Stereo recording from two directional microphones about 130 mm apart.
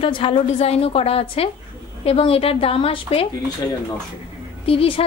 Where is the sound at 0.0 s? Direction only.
45° left (ahead or behind).